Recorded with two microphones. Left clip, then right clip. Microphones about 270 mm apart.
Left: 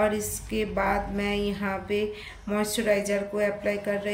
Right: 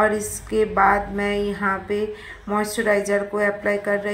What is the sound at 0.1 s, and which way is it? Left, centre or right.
Speech, centre.